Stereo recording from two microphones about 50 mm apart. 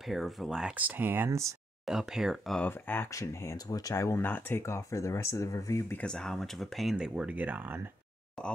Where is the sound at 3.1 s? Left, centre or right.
Left.